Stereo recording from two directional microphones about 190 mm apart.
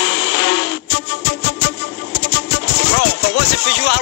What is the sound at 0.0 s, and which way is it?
Music, 65° left (ahead or behind).